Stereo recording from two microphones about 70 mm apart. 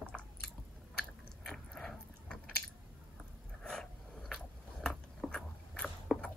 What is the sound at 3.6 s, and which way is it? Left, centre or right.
Biting, centre.